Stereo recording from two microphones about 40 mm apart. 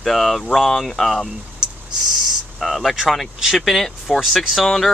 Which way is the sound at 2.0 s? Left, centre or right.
Centre.